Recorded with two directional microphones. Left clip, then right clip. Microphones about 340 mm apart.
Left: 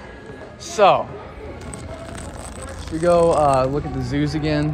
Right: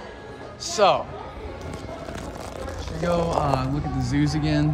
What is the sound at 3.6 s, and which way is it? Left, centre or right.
A man's voice, centre.